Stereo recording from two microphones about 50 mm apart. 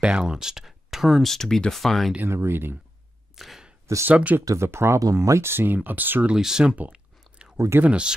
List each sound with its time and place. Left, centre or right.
0.0 s speech: centre
1.2 s speech: centre
2.2 s speech: right
3.3 s a sound: centre
4.1 s speech: right
4.6 s speech: right
5.5 s speech: right
6.3 s speech: centre
6.9 s chewing: centre
7.8 s speech: right